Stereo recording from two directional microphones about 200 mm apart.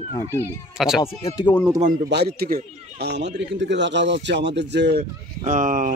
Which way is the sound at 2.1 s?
50° right (ahead or behind).